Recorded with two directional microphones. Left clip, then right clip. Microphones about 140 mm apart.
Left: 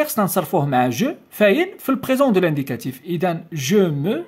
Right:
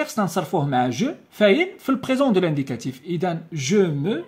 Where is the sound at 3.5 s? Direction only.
45° left (ahead or behind).